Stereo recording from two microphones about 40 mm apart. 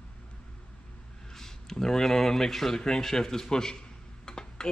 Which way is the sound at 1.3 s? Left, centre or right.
Centre.